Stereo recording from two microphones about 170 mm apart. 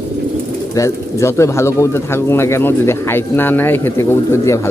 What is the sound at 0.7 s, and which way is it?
Speech, 15° left (ahead or behind).